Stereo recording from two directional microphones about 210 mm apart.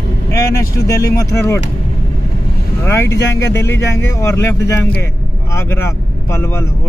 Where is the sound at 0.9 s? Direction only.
15° left (ahead or behind).